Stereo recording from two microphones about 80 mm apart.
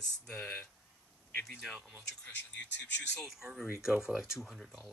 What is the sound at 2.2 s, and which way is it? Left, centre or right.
Speech, centre.